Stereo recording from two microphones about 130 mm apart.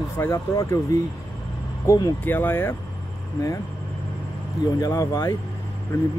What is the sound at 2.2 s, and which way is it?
Speech, 15° left (ahead or behind).